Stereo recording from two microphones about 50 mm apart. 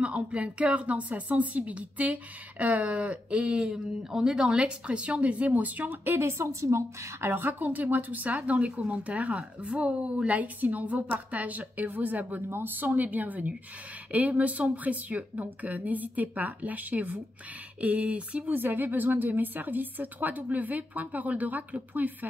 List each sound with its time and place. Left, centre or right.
0.0 s speech: right
6.0 s a woman's voice: right
7.2 s a woman's voice: right
12.4 s a woman's voice: right
18.6 s a woman's voice: right